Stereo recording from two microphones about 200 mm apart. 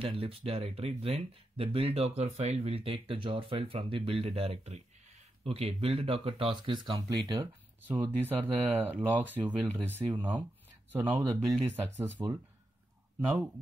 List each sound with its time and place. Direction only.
0.0 s speech: 25° right (ahead or behind)
7.8 s speech: 10° right (ahead or behind)
11.3 s speech: 5° left (ahead or behind)
11.7 s speech: 10° right (ahead or behind)